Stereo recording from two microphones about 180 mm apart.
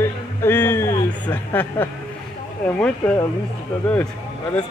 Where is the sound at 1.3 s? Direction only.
10° left (ahead or behind).